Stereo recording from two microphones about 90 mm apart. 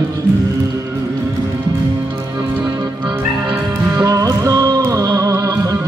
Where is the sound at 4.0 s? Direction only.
40° right (ahead or behind).